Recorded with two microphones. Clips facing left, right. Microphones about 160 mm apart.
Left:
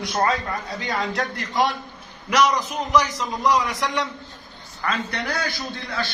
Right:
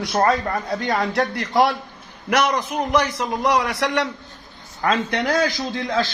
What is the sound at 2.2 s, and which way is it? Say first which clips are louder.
A man's voice: even; 60° right (ahead or behind).